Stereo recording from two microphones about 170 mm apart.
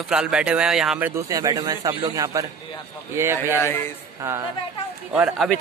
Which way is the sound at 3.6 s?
15° left (ahead or behind).